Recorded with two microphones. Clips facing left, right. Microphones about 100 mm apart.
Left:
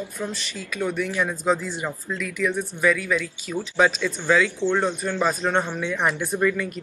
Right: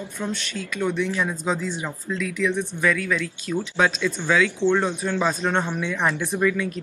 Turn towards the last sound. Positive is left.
turn(degrees=0)  # may be behind; listen again after turning